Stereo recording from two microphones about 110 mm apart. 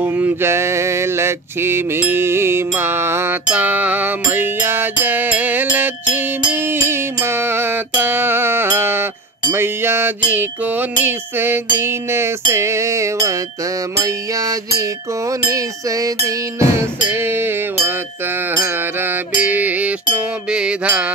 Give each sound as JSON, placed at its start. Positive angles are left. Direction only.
{"t": 0.0, "sound": "mantra", "side_deg": -20}